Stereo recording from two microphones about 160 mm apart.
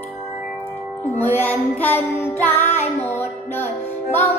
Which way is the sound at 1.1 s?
10° left (ahead or behind).